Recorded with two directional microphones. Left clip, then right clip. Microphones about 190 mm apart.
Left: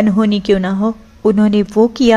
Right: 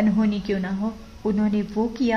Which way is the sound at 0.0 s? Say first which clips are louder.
Left 9 dB; 30° left (ahead or behind).